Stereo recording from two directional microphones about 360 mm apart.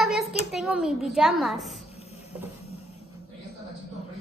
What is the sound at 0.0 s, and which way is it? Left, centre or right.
A child's voice, centre.